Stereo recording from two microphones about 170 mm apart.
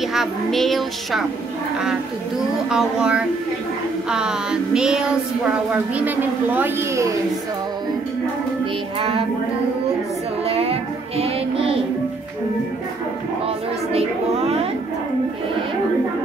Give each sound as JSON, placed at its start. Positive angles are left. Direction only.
{"t": 0.0, "sound": "music", "side_deg": 0}
{"t": 2.7, "sound": "music", "side_deg": -5}
{"t": 10.4, "sound": "child singing", "side_deg": -35}